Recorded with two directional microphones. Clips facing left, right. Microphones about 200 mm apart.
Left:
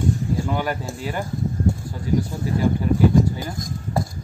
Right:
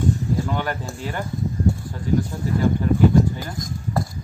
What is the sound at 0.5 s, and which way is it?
Speech, 10° left (ahead or behind).